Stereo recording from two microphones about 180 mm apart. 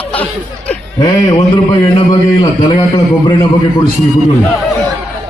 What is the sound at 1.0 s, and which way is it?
A man's voice, 20° left (ahead or behind).